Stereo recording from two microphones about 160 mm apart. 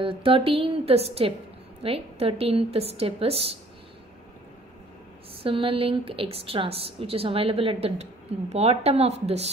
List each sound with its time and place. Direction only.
0.0 s a woman's voice: 35° right (ahead or behind)
5.4 s a woman's voice: 35° right (ahead or behind)